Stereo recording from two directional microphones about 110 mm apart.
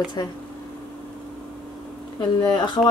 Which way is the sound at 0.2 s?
35° left (ahead or behind).